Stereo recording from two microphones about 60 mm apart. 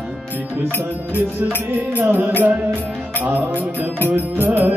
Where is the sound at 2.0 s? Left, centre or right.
Right.